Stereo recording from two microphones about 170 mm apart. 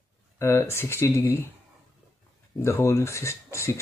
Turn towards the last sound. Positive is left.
turn(degrees=15)  # may be behind; listen again after turning